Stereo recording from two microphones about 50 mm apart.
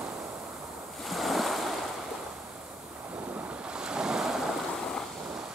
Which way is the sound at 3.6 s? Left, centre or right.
Centre.